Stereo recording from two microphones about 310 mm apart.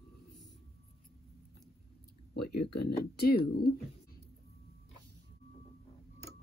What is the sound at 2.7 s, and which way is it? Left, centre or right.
Speech, left.